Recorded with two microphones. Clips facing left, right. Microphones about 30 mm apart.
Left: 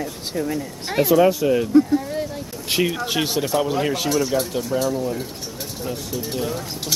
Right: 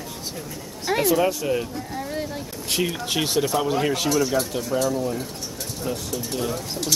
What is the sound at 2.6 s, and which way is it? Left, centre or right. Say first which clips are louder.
Speech: left 4 dB; centre.